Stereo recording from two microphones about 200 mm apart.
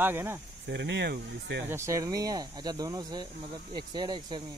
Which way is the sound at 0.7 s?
60° right (ahead or behind).